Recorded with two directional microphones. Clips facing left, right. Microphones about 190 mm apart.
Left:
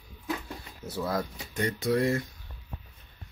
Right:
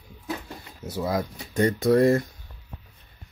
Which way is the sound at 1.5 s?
45° right (ahead or behind).